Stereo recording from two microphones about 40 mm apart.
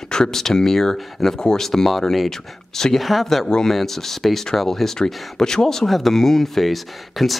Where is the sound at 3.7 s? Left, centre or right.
Centre.